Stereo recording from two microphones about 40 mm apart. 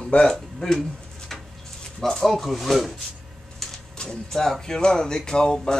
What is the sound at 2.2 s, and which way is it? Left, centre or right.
Speech, centre.